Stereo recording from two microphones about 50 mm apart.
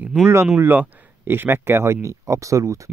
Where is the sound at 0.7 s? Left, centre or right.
Right.